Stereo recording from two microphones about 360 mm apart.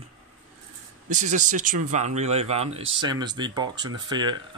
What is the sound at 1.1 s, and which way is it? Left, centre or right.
Speech, right.